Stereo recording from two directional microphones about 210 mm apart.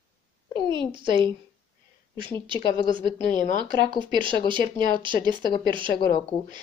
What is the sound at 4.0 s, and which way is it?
Speech, 20° right (ahead or behind).